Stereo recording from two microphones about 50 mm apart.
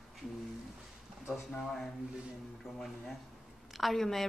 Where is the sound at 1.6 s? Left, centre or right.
Centre.